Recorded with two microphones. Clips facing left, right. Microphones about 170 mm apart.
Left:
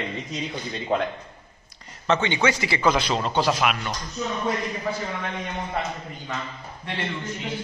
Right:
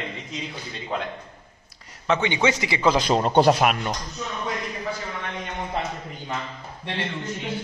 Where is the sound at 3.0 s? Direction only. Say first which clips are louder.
Right 5 dB; 45° right (ahead or behind).